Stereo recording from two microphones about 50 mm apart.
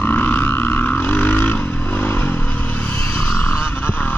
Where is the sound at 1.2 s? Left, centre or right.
Left.